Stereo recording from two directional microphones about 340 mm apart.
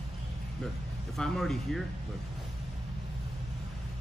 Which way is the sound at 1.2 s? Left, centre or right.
Centre.